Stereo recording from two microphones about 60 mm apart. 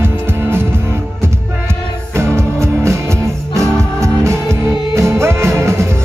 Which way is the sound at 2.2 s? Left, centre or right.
Right.